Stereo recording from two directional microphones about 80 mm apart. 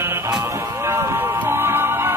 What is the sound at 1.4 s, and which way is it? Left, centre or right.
Music, right.